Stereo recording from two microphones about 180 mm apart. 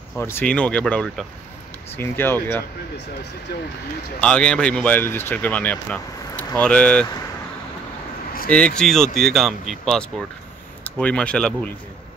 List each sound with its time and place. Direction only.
0.2 s speech: 10° left (ahead or behind)
4.2 s speech: 5° left (ahead or behind)
8.5 s speech: 5° left (ahead or behind)